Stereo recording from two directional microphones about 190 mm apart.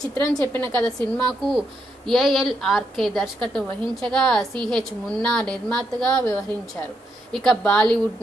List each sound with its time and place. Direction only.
0.0 s a woman's voice: 20° left (ahead or behind)